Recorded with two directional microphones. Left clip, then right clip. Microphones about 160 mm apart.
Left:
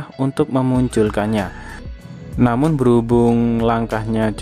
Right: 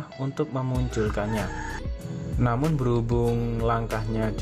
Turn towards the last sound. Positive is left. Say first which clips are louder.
# left 9 dB
turn(degrees=25)  # may be behind; listen again after turning